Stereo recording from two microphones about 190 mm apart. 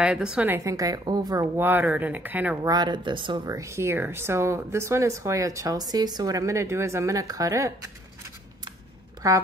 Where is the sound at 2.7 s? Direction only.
25° right (ahead or behind).